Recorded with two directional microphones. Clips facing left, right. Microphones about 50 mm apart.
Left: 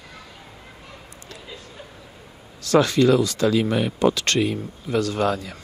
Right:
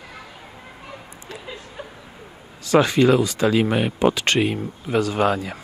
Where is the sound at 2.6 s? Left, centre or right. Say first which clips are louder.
Right 1 dB; centre.